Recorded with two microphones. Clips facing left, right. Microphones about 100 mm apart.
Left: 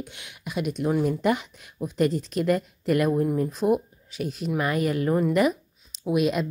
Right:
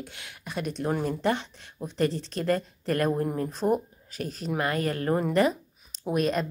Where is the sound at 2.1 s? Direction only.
30° right (ahead or behind).